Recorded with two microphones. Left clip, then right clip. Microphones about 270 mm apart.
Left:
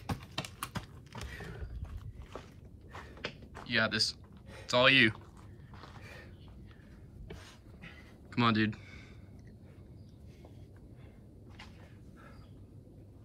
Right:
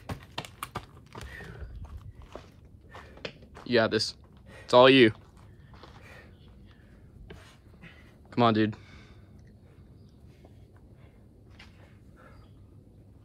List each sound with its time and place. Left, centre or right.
0.0 s typing: centre
3.6 s speech: centre
8.3 s a sound: centre